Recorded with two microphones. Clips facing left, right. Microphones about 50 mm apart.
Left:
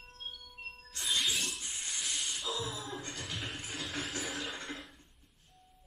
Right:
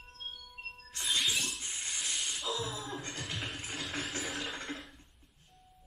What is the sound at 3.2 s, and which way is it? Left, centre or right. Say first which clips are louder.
Music: right 1 dB; centre.